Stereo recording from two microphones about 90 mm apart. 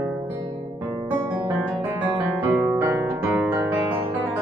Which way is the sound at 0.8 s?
20° right (ahead or behind).